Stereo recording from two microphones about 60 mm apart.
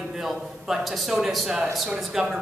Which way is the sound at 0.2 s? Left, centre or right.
Centre.